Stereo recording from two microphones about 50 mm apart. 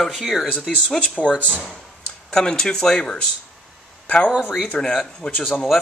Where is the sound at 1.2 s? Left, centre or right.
Left.